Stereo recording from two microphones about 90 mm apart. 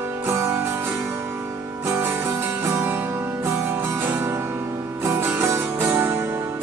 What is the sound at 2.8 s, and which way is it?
Music, 25° right (ahead or behind).